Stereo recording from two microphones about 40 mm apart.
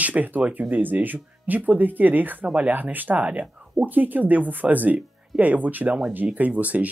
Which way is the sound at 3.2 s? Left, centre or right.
Right.